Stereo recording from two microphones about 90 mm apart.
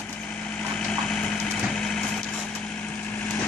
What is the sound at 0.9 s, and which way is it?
Engine, 10° left (ahead or behind).